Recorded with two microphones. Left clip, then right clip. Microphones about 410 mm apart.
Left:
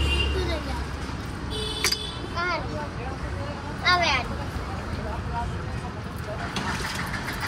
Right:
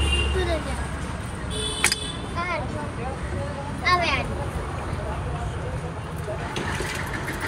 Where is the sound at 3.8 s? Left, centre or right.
Centre.